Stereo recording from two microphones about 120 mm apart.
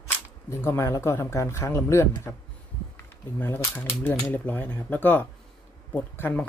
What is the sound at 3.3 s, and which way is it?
Speech, 15° left (ahead or behind).